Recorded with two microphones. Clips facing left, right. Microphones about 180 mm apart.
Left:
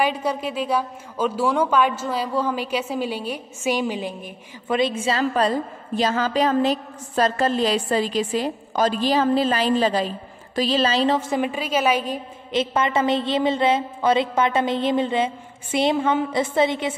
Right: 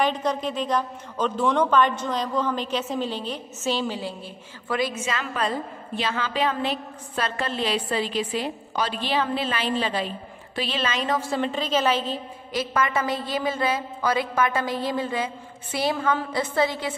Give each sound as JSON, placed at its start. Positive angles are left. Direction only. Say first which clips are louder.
{"t": 0.0, "sound": "a woman's voice", "louder": "left 1 dB", "side_deg": 10}